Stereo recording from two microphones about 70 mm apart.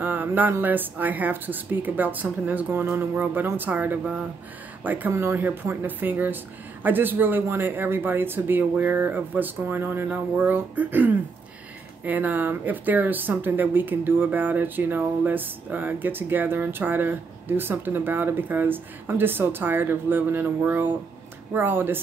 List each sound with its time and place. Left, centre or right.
0.0 s a woman's voice: right